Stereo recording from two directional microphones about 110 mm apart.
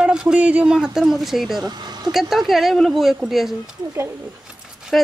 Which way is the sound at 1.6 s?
40° right (ahead or behind).